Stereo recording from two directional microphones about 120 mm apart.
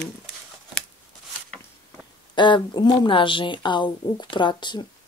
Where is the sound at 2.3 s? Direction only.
40° left (ahead or behind).